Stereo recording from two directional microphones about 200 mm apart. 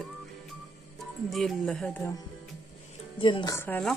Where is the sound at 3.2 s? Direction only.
25° left (ahead or behind).